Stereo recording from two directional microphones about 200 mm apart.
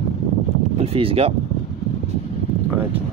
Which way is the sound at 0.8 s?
30° right (ahead or behind).